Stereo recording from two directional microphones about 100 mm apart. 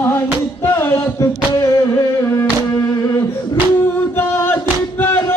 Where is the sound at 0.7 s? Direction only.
20° left (ahead or behind).